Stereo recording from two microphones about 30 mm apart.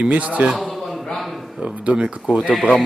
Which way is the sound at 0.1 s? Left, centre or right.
Right.